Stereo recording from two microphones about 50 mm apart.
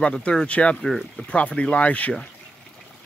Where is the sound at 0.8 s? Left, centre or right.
Centre.